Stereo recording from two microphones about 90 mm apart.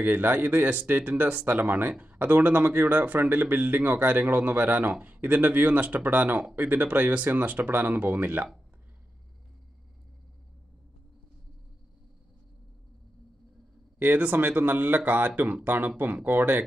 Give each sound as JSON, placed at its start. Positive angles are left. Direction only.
{"t": 0.0, "sound": "speech", "side_deg": -20}
{"t": 13.9, "sound": "speech", "side_deg": -20}